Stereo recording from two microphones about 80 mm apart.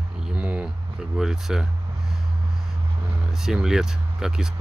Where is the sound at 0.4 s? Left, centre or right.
Centre.